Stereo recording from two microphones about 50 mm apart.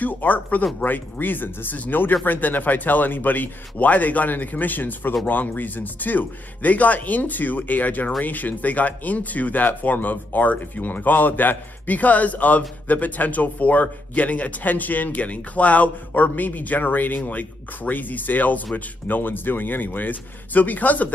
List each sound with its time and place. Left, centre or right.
0.0 s speech: left